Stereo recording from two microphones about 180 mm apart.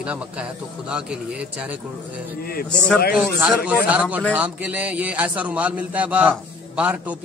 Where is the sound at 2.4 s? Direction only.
55° left (ahead or behind).